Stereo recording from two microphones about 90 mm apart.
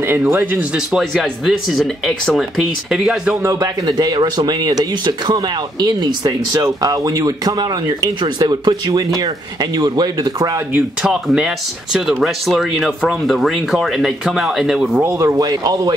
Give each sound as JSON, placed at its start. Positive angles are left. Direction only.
{"t": 0.0, "sound": "speech", "side_deg": -25}
{"t": 0.7, "sound": "speech", "side_deg": -5}
{"t": 3.4, "sound": "a man's voice", "side_deg": -35}
{"t": 3.8, "sound": "speech", "side_deg": -50}
{"t": 10.7, "sound": "speech", "side_deg": -10}
{"t": 15.1, "sound": "speech", "side_deg": -45}